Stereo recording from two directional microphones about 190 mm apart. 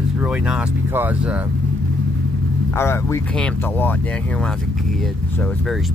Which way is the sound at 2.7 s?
15° left (ahead or behind).